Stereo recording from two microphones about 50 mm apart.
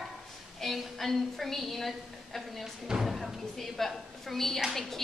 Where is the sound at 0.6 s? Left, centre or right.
Centre.